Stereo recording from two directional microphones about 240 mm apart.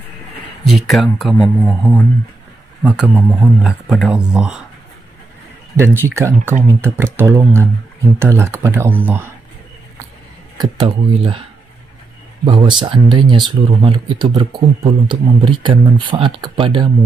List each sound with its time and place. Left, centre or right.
0.7 s speech: centre
5.8 s speech: centre
10.6 s speech: right
12.4 s speech: centre